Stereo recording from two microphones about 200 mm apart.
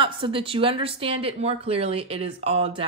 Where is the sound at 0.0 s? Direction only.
25° right (ahead or behind).